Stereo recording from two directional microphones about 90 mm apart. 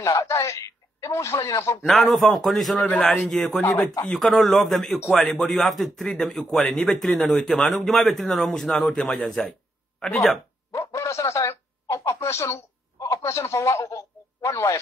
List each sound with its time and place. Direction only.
0.0 s speech: 35° left (ahead or behind)
1.9 s a man's voice: centre (ahead or behind)
2.9 s a man's voice: 10° left (ahead or behind)
10.7 s a sound: 35° left (ahead or behind)
13.0 s speech: 35° left (ahead or behind)